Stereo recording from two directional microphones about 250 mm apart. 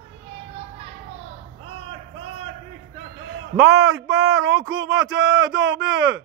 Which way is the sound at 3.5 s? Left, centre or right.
Right.